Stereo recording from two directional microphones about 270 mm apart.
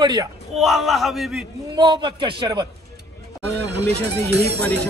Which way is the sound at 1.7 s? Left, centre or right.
Centre.